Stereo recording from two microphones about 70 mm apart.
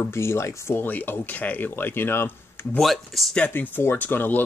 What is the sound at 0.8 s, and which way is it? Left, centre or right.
Speech, left.